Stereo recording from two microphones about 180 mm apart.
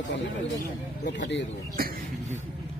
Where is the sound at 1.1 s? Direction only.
85° left.